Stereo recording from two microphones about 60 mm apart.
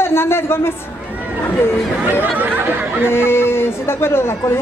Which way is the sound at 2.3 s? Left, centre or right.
Right.